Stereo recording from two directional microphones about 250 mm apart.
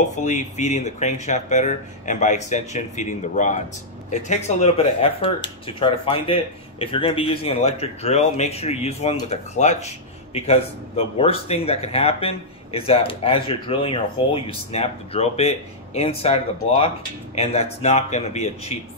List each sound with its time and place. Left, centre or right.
0.1 s speech: left